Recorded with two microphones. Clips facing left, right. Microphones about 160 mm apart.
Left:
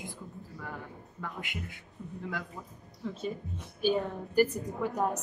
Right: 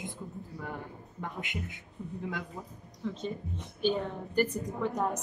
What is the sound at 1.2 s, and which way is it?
Speech, 20° right (ahead or behind).